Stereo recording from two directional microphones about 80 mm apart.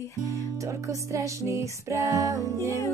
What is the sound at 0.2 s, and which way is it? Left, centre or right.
Music, right.